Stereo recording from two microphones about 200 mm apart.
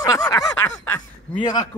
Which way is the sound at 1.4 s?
20° left (ahead or behind).